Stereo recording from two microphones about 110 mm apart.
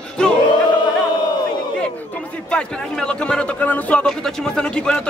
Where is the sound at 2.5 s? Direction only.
10° left (ahead or behind).